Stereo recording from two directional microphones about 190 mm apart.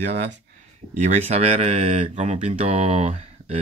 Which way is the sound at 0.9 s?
40° right (ahead or behind).